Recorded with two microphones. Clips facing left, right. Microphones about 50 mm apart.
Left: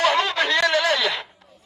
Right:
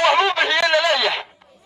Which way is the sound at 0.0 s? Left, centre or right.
Right.